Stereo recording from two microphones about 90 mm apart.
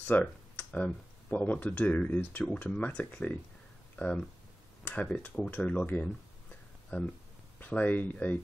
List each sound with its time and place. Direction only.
0.0 s speech: 15° left (ahead or behind)
7.5 s speech: 20° left (ahead or behind)